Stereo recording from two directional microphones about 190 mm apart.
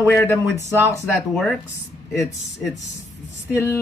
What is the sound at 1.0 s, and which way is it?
Speech, centre (ahead or behind).